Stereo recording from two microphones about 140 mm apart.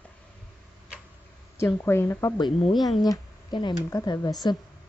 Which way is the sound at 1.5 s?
20° left (ahead or behind).